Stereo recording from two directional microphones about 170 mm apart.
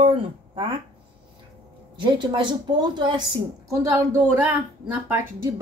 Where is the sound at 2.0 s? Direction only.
25° right (ahead or behind).